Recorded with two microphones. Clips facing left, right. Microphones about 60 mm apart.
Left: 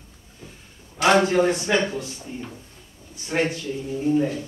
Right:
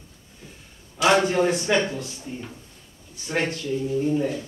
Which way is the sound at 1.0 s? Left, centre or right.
Centre.